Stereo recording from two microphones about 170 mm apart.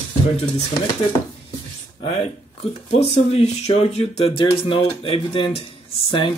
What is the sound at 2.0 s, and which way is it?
A man's voice, 35° left (ahead or behind).